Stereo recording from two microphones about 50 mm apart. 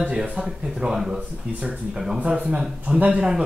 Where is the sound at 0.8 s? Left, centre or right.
Centre.